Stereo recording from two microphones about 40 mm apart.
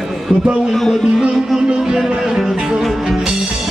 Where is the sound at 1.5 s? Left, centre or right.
Right.